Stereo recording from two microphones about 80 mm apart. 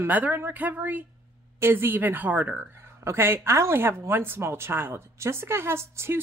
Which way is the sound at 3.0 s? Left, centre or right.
Right.